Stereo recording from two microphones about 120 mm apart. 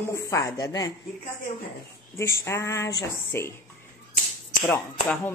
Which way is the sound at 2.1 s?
25° left (ahead or behind).